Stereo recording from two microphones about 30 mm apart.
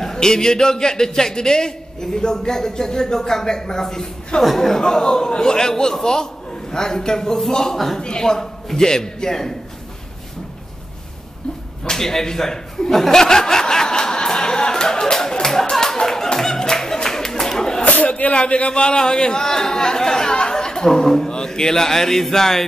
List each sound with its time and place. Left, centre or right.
0.0 s a man's voice: left
4.4 s speech: centre
4.8 s a man's voice: left
8.0 s a man's voice: left
11.9 s speech: centre
12.9 s speech: centre
13.2 s music: centre
15.7 s clapping: centre
16.3 s music: centre
17.8 s speech: left
18.7 s a man's voice: left; by 22.7 s centre